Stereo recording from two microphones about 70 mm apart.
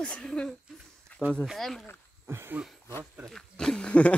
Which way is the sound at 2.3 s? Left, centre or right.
Right.